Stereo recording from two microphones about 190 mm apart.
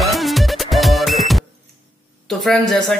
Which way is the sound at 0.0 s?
Centre (ahead or behind).